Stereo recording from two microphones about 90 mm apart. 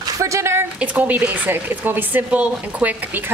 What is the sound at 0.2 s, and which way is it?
Speech, 30° right (ahead or behind).